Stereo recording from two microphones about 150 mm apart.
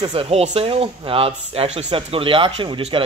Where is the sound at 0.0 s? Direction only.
40° right (ahead or behind).